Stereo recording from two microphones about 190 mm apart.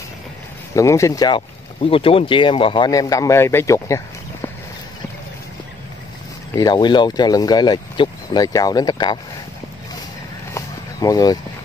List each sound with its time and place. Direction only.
0.7 s speech: 15° left (ahead or behind)
6.5 s speech: 20° left (ahead or behind)
10.5 s vehicle: 20° left (ahead or behind)